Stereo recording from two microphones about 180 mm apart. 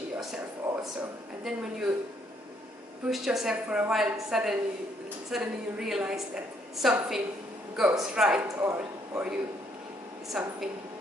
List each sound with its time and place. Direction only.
0.7 s a sound: 20° right (ahead or behind)
1.4 s a woman's voice: centre (ahead or behind)
3.1 s a woman's voice: centre (ahead or behind)